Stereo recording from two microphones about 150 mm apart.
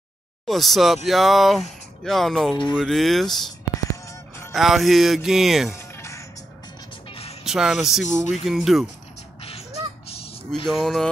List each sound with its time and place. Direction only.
0.5 s speech: centre (ahead or behind)
2.5 s a sound: 30° left (ahead or behind)
2.8 s speech: centre (ahead or behind)
3.9 s music: 20° left (ahead or behind)
4.5 s speech: centre (ahead or behind)
5.8 s music: 20° left (ahead or behind)
7.1 s music: 40° left (ahead or behind)
7.4 s speech: 5° right (ahead or behind)
10.0 s honk: 40° left (ahead or behind)
10.7 s speech: centre (ahead or behind)